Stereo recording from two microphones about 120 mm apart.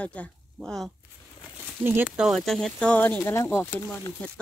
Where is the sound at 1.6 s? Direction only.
15° right (ahead or behind).